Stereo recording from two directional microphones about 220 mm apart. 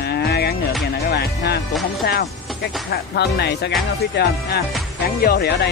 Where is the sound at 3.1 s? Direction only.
50° left (ahead or behind).